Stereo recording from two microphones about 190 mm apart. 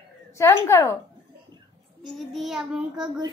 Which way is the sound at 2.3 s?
Centre (ahead or behind).